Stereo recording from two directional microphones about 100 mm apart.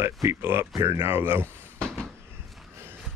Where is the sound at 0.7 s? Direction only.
40° right (ahead or behind).